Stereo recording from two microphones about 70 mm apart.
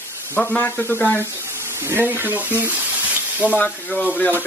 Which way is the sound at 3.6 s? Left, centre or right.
Left.